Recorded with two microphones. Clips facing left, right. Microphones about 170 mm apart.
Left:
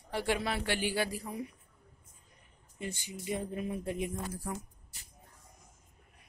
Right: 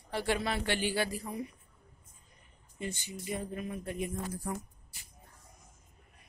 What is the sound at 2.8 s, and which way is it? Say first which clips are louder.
Speech: even; 10° left (ahead or behind).